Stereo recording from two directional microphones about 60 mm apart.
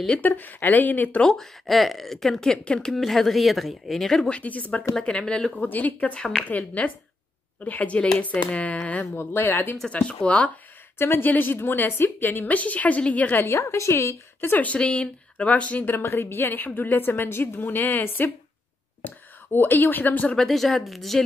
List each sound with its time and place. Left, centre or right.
0.1 s speech: left
1.2 s speech: centre
2.9 s speech: centre
4.3 s speech: left
4.9 s speech: centre
5.6 s speech: left
9.1 s a woman's voice: left
9.8 s speech: centre
11.0 s a woman's voice: left
13.5 s a woman's voice: left
14.4 s a woman's voice: left
14.7 s speech: centre
15.9 s a woman's voice: left
20.4 s speech: centre